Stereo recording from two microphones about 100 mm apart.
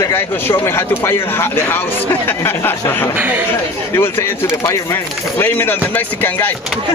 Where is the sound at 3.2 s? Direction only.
15° right (ahead or behind).